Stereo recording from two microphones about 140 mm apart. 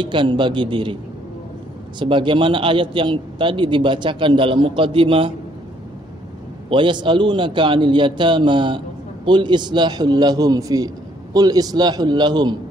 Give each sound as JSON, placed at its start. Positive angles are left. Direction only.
{"t": 0.0, "sound": "a man's voice", "side_deg": -35}
{"t": 2.0, "sound": "a man's voice", "side_deg": -35}
{"t": 6.7, "sound": "a man's voice", "side_deg": -35}